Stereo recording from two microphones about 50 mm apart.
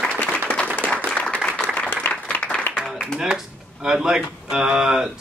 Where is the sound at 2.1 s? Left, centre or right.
Left.